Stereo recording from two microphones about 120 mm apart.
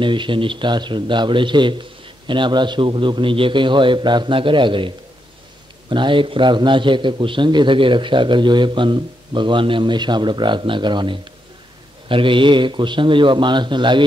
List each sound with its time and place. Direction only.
0.0 s a man's voice: 45° right (ahead or behind)